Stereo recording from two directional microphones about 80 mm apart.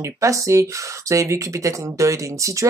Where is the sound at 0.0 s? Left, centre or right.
Right.